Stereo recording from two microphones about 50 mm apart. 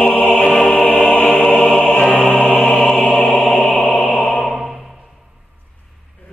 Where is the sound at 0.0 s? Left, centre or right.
Left.